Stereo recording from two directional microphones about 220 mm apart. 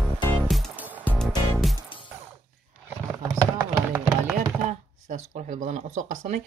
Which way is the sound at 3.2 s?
10° right (ahead or behind).